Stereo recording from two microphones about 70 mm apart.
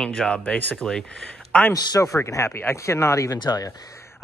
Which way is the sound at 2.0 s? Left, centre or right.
Left.